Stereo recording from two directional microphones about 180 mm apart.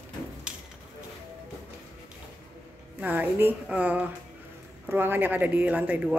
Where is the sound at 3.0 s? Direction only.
10° right (ahead or behind).